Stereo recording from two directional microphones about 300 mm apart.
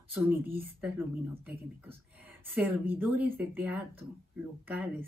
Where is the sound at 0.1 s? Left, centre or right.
Centre.